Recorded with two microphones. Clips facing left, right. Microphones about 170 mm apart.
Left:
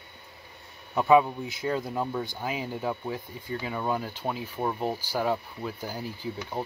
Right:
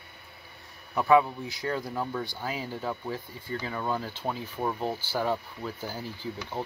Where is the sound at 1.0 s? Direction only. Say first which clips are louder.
Left 1 dB; 20° left (ahead or behind).